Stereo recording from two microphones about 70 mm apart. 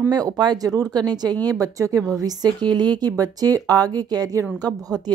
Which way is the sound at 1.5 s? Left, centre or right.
Right.